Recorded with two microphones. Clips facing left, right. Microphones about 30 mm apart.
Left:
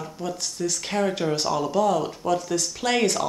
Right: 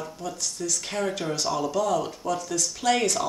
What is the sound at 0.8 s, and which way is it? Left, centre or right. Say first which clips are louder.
Speech: left 5 dB; centre.